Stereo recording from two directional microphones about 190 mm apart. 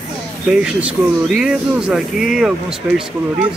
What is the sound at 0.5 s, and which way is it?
Speech, 5° right (ahead or behind).